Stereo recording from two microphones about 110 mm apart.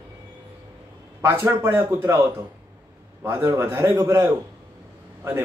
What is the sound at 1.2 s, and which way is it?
Speech, 20° right (ahead or behind).